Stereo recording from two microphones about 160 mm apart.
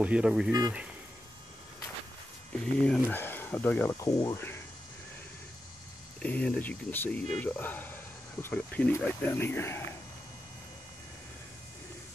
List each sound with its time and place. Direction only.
0.0 s speech: 5° right (ahead or behind)
0.5 s speech: 20° right (ahead or behind)
2.5 s speech: 5° left (ahead or behind)
6.2 s speech: 5° left (ahead or behind)